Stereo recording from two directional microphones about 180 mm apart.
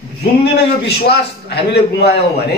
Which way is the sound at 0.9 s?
65° left (ahead or behind).